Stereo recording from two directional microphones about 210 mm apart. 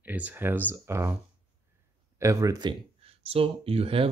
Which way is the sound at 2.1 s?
15° right (ahead or behind).